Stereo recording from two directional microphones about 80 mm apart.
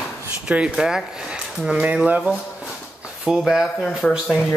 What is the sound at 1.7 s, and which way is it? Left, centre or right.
Speech, centre.